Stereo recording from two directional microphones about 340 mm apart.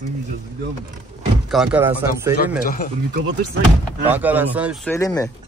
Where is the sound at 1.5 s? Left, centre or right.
Centre.